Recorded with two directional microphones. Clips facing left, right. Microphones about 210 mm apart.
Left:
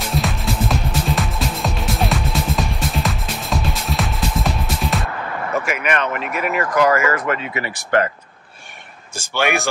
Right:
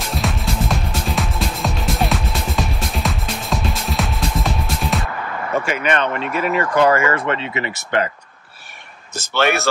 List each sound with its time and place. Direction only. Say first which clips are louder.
0.0 s music: left 1 dB; centre (ahead or behind)
5.6 s speech: right 2 dB; 30° right (ahead or behind)
9.1 s speech: right 2 dB; 10° left (ahead or behind)